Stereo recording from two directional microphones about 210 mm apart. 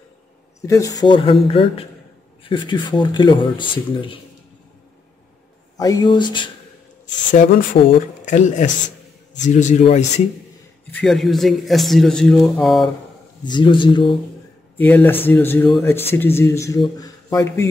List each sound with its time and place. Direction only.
0.6 s speech: 15° left (ahead or behind)
5.8 s speech: 20° left (ahead or behind)
7.3 s speech: 40° left (ahead or behind)
10.9 s speech: 5° left (ahead or behind)
13.5 s speech: 20° left (ahead or behind)
14.8 s speech: 10° left (ahead or behind)